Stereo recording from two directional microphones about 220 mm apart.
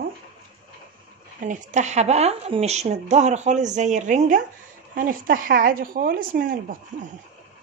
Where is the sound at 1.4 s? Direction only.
30° right (ahead or behind).